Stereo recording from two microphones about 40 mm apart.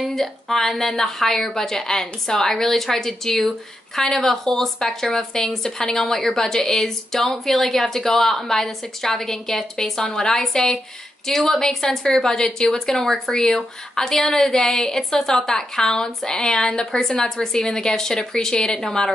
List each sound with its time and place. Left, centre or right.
0.1 s a woman's voice: centre